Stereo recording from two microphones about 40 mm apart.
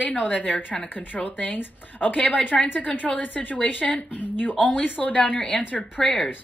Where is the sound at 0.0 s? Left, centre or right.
Left.